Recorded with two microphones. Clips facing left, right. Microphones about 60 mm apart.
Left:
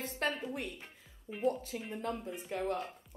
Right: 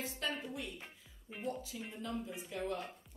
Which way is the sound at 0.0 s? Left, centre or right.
Left.